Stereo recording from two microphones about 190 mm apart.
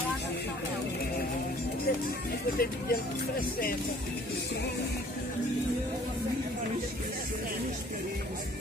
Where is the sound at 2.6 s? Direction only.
50° left (ahead or behind).